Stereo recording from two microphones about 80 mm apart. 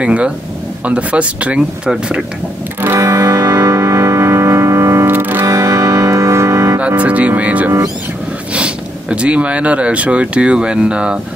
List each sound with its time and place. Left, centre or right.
0.0 s speech: centre
3.0 s music: right
5.1 s music: right
5.5 s music: right
7.0 s speech: centre